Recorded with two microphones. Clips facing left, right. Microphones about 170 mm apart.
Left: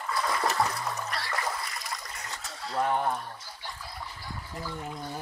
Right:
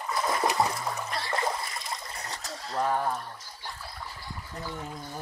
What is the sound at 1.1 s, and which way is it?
Trickle, 25° right (ahead or behind).